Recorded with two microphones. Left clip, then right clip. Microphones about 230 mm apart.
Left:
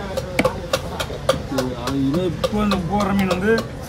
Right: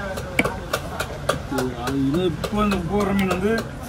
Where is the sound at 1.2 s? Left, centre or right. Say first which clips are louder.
Left 4 dB; centre.